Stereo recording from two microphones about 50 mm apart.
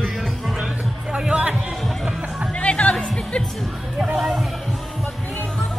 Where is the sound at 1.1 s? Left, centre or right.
Centre.